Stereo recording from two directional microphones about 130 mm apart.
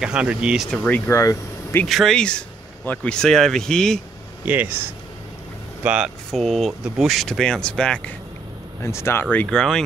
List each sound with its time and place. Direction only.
0.0 s speech: 5° right (ahead or behind)
0.7 s speech: 10° left (ahead or behind)
1.1 s speech: 25° left (ahead or behind)
1.9 s speech: centre (ahead or behind)
4.5 s speech: 15° right (ahead or behind)
5.9 s speech: 5° right (ahead or behind)
8.8 s speech: 20° left (ahead or behind); by 9.8 s 5° left (ahead or behind)